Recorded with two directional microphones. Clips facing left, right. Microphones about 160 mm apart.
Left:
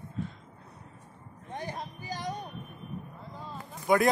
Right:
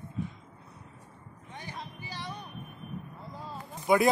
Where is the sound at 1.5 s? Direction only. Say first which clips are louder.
Left 5 dB; 45° left (ahead or behind).